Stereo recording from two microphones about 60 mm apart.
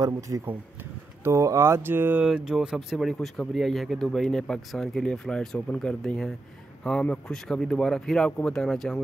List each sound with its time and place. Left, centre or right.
0.3 s speech: right
1.2 s speech: right
2.2 s speech: centre
3.1 s a man's voice: centre